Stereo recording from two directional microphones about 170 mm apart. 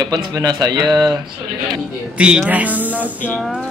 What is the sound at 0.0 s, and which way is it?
Speech, 20° right (ahead or behind).